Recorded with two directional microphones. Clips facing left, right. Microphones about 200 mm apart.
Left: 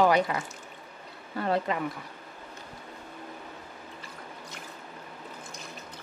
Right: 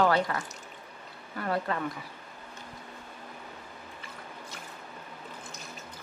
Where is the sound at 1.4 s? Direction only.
20° left (ahead or behind).